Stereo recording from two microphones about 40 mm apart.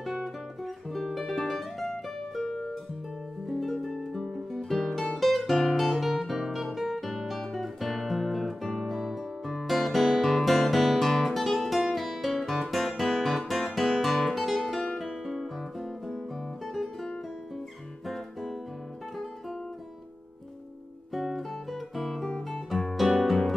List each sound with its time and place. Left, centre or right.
0.0 s guitar: centre
0.9 s music: centre
3.4 s harp: centre
3.9 s guitar: centre
9.6 s music: centre
13.5 s guitar: centre
15.2 s music: centre
16.6 s guitar: centre
18.0 s music: centre
21.1 s guitar: centre
22.5 s music: centre